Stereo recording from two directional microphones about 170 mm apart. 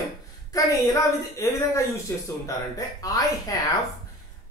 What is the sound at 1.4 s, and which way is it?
Speech, 15° left (ahead or behind).